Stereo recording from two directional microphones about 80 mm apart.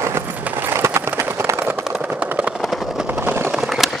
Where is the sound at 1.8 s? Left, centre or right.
Centre.